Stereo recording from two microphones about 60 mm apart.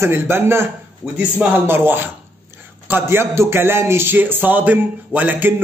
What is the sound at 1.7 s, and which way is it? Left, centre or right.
A man's voice, right.